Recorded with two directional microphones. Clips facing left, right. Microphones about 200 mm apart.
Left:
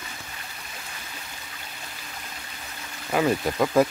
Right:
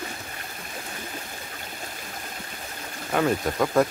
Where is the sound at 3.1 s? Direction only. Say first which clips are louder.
Left 1 dB; 5° left (ahead or behind).